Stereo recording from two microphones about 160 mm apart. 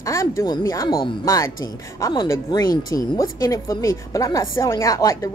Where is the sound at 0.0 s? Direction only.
20° left (ahead or behind).